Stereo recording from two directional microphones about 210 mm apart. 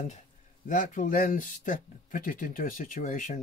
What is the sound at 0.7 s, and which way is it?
Speech, 40° left (ahead or behind).